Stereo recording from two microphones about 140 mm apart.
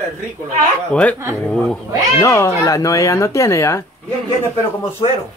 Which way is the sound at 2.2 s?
20° left (ahead or behind).